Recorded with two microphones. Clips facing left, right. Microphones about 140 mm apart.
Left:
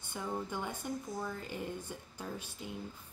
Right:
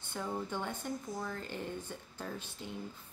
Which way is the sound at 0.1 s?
5° left (ahead or behind).